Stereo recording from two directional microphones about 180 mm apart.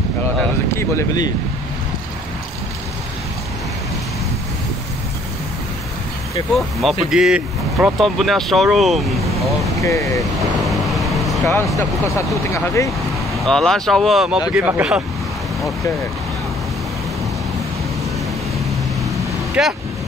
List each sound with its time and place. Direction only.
0.4 s a sound: 15° left (ahead or behind)
6.8 s speech: centre (ahead or behind)
9.8 s speech: 15° left (ahead or behind)
10.7 s vehicle: centre (ahead or behind)
11.4 s speech: 15° left (ahead or behind)
13.4 s speech: 5° left (ahead or behind)
19.6 s speech: 5° right (ahead or behind)